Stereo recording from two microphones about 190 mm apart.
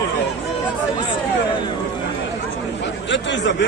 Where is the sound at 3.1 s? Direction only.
70° left (ahead or behind).